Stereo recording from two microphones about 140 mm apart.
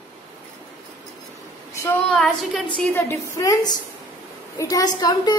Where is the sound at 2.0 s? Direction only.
10° left (ahead or behind).